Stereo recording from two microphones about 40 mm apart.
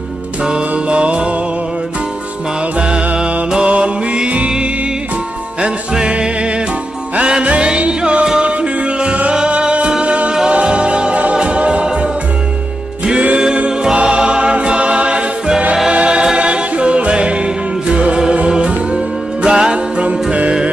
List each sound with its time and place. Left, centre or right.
0.4 s mantra: right
3.6 s music: right
5.6 s music: right
13.9 s choir: right
15.9 s music: right